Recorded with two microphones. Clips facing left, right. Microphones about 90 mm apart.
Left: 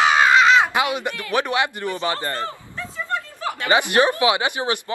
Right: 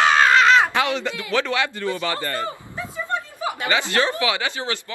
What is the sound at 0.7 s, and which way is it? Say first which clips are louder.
Speech: even; 15° left (ahead or behind).